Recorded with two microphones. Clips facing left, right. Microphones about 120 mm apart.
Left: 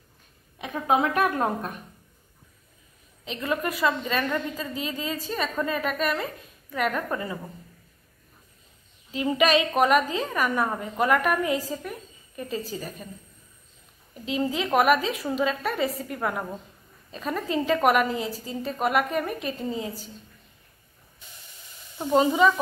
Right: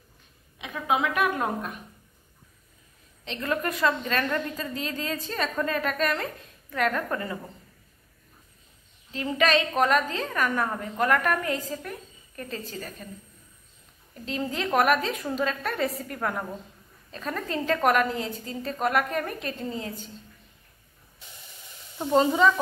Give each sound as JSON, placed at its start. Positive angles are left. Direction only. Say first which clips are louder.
{"t": 0.6, "sound": "a woman's voice", "louder": "left 3 dB", "side_deg": 40}
{"t": 3.3, "sound": "a woman's voice", "louder": "left 1 dB", "side_deg": 10}
{"t": 9.1, "sound": "a woman's voice", "louder": "left 2 dB", "side_deg": 10}
{"t": 14.1, "sound": "a woman's voice", "louder": "left 4 dB", "side_deg": 5}
{"t": 22.2, "sound": "a woman's voice", "louder": "left 2 dB", "side_deg": 10}